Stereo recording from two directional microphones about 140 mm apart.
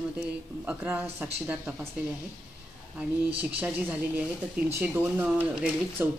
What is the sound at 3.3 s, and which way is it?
Speech, 10° right (ahead or behind).